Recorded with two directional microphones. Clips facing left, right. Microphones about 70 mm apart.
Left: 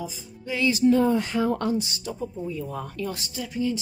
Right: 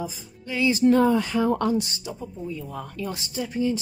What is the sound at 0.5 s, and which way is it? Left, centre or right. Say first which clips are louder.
Speech: right 1 dB; centre.